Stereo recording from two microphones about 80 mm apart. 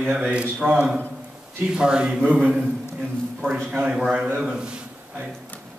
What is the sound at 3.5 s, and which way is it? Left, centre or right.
Speech, right.